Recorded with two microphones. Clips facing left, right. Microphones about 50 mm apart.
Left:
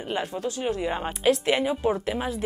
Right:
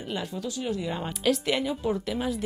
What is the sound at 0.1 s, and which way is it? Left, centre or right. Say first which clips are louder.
Speech: left 4 dB; left.